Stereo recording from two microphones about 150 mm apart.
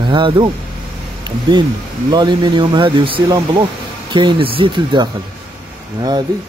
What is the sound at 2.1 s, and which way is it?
Speech, 30° right (ahead or behind).